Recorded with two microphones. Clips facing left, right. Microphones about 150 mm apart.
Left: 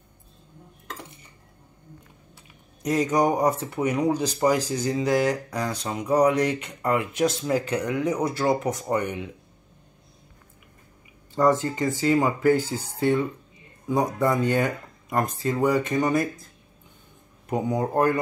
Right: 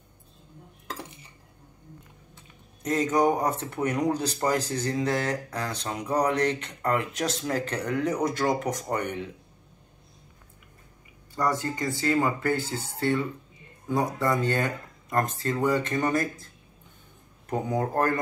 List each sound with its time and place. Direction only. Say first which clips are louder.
2.3 s speech: even; 10° left (ahead or behind)
11.3 s speech: left 6 dB; 20° left (ahead or behind)
13.8 s speech: left 3 dB; 15° left (ahead or behind)
17.5 s speech: left 2 dB; 10° left (ahead or behind)